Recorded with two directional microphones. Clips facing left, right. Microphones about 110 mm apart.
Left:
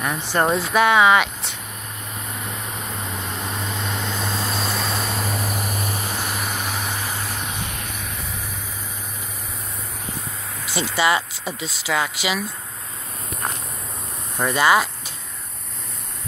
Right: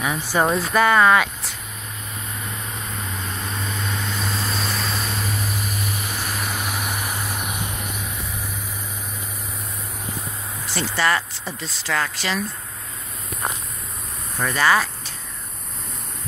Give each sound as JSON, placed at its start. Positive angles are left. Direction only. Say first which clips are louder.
{"t": 0.3, "sound": "speech", "louder": "even", "side_deg": 0}
{"t": 3.4, "sound": "vehicle", "louder": "even", "side_deg": 25}
{"t": 5.9, "sound": "vehicle", "louder": "left 2 dB", "side_deg": 30}
{"t": 6.3, "sound": "vehicle", "louder": "even", "side_deg": 0}
{"t": 10.6, "sound": "speech", "louder": "left 2 dB", "side_deg": 15}
{"t": 14.4, "sound": "speech", "louder": "left 2 dB", "side_deg": 15}